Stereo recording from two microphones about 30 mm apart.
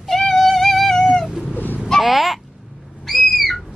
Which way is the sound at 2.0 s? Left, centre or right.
Centre.